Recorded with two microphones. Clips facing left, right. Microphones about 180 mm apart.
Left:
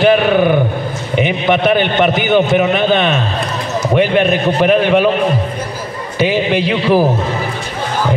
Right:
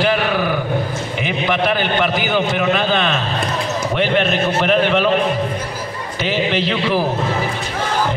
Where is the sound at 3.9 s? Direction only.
15° left (ahead or behind).